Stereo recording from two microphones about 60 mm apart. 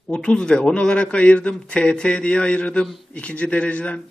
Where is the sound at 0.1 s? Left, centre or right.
Centre.